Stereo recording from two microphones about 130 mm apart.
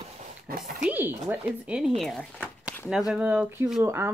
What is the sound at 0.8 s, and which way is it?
Speech, 15° right (ahead or behind).